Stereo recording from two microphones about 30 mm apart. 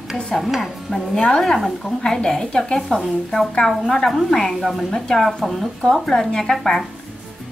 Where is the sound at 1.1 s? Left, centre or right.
Left.